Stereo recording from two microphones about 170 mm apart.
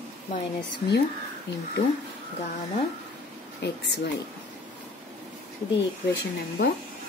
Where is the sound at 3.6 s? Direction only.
80° left.